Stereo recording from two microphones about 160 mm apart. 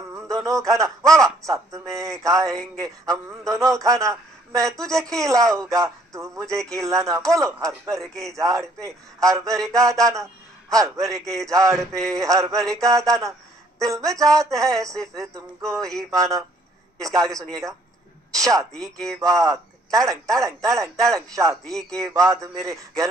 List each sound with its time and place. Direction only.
0.1 s a man's voice: 20° right (ahead or behind)